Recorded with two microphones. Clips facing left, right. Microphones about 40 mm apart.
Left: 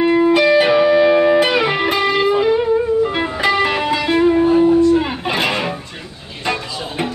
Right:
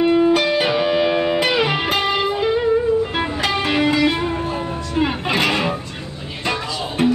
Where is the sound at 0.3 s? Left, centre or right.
Centre.